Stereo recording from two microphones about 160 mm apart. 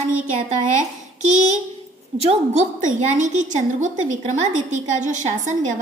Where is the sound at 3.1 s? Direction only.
50° right (ahead or behind).